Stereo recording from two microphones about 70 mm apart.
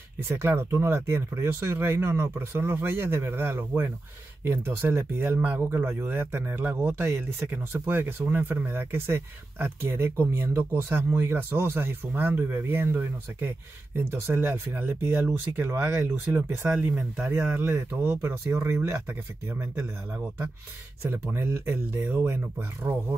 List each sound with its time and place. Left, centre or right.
0.4 s speech: right
16.6 s speech: right
21.0 s speech: right
22.9 s speech: right